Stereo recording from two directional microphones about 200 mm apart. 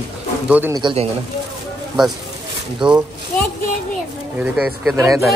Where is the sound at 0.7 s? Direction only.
25° right (ahead or behind).